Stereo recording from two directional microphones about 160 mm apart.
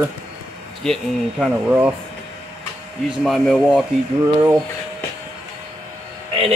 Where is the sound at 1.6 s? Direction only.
10° right (ahead or behind).